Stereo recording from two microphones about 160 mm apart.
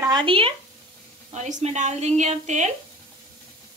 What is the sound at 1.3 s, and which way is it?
A woman's voice, 45° right (ahead or behind).